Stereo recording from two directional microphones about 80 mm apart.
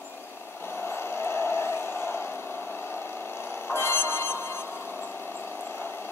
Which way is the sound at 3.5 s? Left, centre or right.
Left.